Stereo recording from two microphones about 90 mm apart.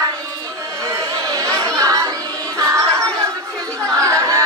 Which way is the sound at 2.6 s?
35° right (ahead or behind).